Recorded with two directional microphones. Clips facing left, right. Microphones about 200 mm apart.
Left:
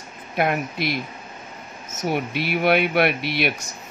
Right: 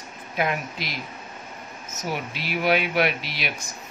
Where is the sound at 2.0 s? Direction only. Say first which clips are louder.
Left 6 dB; 60° left (ahead or behind).